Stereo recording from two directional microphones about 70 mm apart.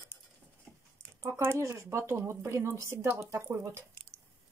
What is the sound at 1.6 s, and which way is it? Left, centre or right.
Speech, right.